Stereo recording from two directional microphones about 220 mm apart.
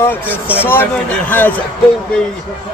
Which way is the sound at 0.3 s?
5° right (ahead or behind).